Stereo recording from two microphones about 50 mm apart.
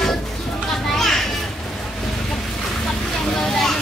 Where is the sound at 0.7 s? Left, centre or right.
Centre.